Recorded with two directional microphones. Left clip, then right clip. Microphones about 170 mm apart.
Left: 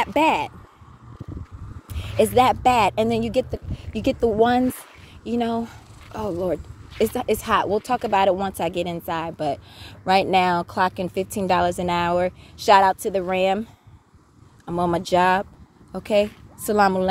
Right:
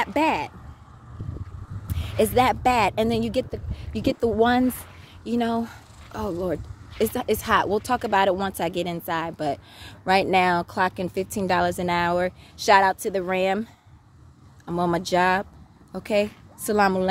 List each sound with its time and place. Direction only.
0.0 s speech: 10° left (ahead or behind)
1.9 s speech: centre (ahead or behind)
14.7 s speech: centre (ahead or behind)